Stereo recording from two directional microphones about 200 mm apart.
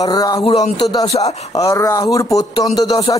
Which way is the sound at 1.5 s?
15° left (ahead or behind).